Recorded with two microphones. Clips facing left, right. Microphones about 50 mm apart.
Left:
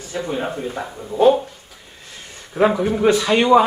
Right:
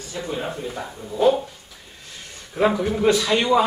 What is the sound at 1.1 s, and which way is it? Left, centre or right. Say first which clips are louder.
Speech: left 4 dB; left.